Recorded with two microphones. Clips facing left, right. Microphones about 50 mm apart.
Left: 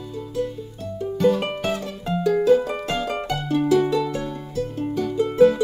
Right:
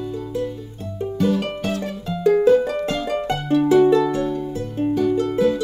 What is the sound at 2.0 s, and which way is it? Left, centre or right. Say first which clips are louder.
Music: left 2 dB; left.